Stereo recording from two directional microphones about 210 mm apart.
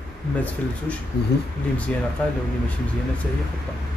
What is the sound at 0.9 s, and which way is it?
Speech, 5° left (ahead or behind).